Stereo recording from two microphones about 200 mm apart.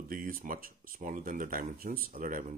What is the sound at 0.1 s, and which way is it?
Speech, 45° right (ahead or behind).